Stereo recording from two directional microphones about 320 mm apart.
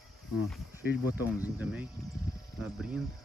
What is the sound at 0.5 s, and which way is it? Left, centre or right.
Speech, centre.